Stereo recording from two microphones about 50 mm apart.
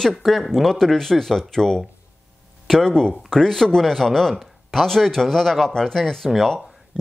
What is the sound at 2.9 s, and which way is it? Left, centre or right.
Speech, centre.